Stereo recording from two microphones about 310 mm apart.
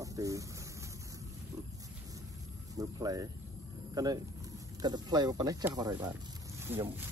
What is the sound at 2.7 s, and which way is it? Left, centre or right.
Speech, centre.